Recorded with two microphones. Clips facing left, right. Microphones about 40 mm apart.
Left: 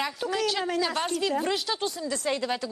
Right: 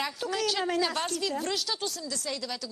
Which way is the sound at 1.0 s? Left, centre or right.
Centre.